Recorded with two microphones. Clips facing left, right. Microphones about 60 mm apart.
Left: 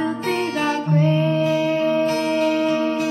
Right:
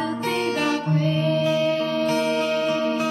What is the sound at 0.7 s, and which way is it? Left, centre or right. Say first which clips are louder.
Music: left 3 dB; left.